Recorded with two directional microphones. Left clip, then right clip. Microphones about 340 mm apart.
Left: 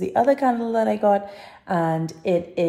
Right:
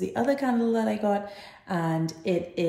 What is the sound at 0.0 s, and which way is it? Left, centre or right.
A woman's voice, left.